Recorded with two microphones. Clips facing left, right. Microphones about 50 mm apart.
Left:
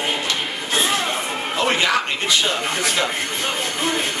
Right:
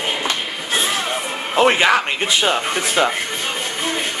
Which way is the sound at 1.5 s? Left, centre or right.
Right.